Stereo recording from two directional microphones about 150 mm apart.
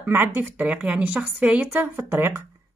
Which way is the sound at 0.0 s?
15° right (ahead or behind).